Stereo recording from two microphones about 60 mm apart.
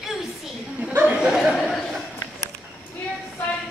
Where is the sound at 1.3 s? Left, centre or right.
Centre.